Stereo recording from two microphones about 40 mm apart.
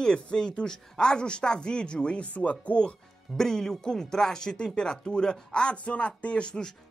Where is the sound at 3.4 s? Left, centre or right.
Centre.